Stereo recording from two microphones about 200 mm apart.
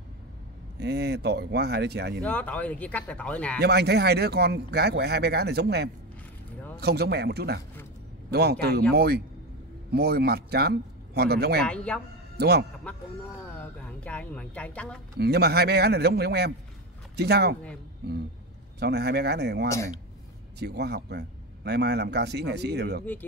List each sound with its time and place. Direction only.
0.7 s a man's voice: 55° right (ahead or behind)
2.2 s speech: 5° left (ahead or behind)
3.6 s a man's voice: 55° right (ahead or behind)
11.6 s speech: 5° left (ahead or behind)
12.4 s speech: 55° right (ahead or behind)
12.9 s speech: 5° left (ahead or behind)
15.1 s a man's voice: 55° right (ahead or behind)
18.8 s a man's voice: 55° right (ahead or behind)